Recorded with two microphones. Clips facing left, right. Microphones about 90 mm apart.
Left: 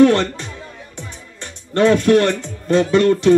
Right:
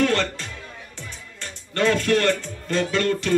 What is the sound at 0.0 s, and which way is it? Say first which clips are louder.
Music: left 9 dB; 20° left (ahead or behind).